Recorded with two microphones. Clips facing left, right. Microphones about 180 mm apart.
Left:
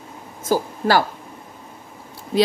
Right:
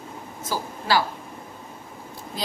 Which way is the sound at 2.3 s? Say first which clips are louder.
Left 12 dB; 80° left.